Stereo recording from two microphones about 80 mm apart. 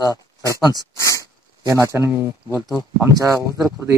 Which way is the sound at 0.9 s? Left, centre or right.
Left.